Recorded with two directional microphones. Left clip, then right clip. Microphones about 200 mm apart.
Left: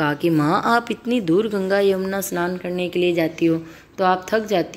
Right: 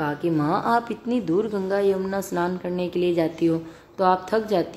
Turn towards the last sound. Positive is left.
turn(degrees=5)  # may be behind; listen again after turning